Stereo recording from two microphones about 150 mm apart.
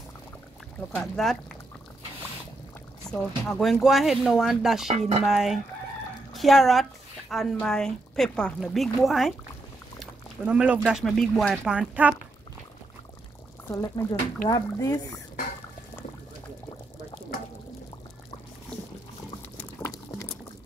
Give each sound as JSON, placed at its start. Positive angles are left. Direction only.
{"t": 0.7, "sound": "a woman's voice", "side_deg": 5}
{"t": 3.1, "sound": "a woman's voice", "side_deg": 5}
{"t": 4.8, "sound": "speech", "side_deg": -45}
{"t": 5.2, "sound": "a woman's voice", "side_deg": 0}
{"t": 10.4, "sound": "a woman's voice", "side_deg": -10}
{"t": 13.7, "sound": "speech", "side_deg": 20}